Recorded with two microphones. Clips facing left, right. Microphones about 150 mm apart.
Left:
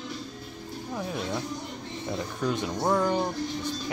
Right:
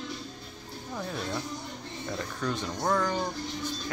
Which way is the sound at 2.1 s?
15° left (ahead or behind).